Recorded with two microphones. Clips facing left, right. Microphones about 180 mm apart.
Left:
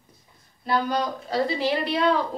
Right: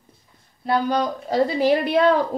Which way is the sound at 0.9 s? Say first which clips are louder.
Right 4 dB; 45° right (ahead or behind).